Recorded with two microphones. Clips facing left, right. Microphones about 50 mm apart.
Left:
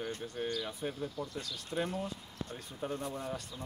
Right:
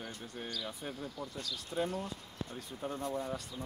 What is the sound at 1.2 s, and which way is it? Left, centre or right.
Speech, centre.